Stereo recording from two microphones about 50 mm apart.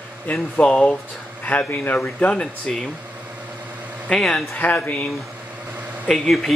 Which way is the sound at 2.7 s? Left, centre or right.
Centre.